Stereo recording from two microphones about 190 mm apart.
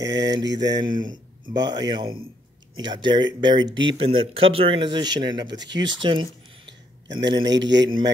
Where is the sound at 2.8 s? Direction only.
25° right (ahead or behind).